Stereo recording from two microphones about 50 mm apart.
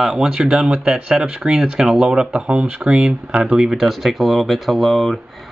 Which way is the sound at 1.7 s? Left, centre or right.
Centre.